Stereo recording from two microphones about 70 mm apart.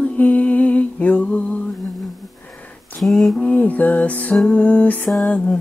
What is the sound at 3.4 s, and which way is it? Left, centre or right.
Music, centre.